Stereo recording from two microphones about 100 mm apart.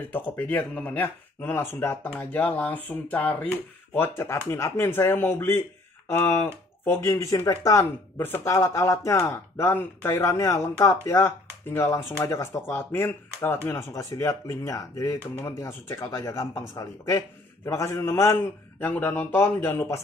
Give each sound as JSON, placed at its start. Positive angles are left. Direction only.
{"t": 0.1, "sound": "speech", "side_deg": 15}